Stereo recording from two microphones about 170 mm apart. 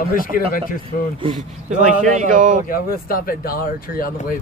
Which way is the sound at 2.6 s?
55° left (ahead or behind).